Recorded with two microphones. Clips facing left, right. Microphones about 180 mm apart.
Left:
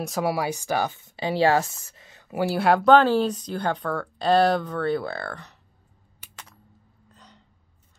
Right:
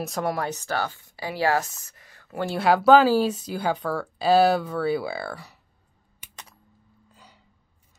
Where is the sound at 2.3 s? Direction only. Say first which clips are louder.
Left 1 dB; centre (ahead or behind).